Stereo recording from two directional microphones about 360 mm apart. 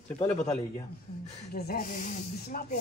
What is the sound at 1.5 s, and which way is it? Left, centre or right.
Speech, left.